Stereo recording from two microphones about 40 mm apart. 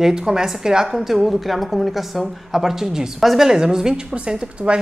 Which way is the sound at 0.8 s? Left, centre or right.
Centre.